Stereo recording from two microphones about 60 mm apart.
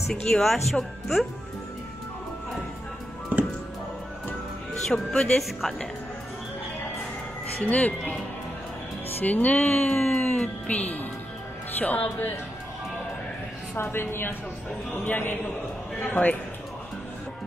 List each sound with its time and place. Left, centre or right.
0.1 s speech: centre
3.3 s music: right
4.8 s speech: centre
7.6 s music: left
9.2 s music: left
9.9 s speech: centre
10.4 s music: left
13.8 s speech: left
16.0 s music: left